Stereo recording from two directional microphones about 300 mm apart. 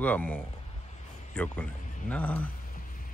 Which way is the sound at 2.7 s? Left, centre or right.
Left.